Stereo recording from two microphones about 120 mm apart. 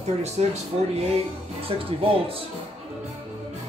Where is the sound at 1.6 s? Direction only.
50° right (ahead or behind).